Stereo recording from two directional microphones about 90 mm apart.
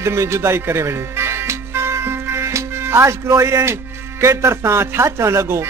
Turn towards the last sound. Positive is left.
turn(degrees=-30)  # may be behind; listen again after turning